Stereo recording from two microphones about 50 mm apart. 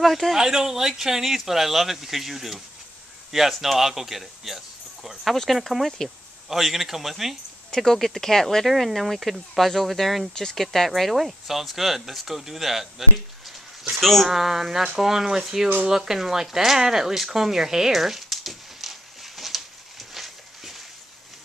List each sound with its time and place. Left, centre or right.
0.0 s speech: centre
7.7 s speech: centre
13.8 s speech: centre